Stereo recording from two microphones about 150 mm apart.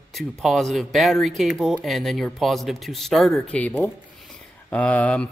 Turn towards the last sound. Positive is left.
turn(degrees=10)  # may be behind; listen again after turning